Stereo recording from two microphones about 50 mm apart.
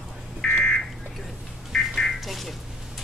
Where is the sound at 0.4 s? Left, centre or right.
Centre.